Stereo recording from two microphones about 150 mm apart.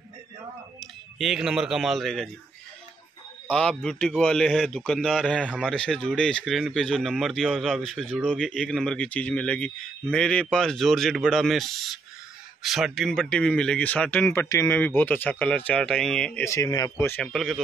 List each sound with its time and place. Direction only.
0.7 s speech: centre (ahead or behind)
3.4 s speech: 5° left (ahead or behind)
16.4 s speech: 20° left (ahead or behind)
17.3 s speech: centre (ahead or behind)